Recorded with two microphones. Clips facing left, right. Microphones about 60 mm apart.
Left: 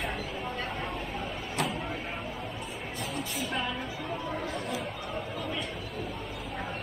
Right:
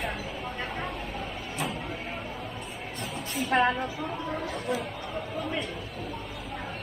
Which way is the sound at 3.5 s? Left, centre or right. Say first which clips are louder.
Right 12 dB; right.